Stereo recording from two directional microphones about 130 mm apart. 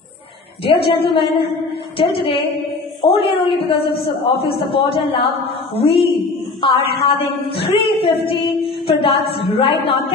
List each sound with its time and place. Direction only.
0.7 s a woman's voice: 45° left (ahead or behind)